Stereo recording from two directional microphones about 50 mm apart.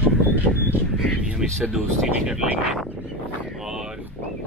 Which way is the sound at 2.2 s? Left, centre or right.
Centre.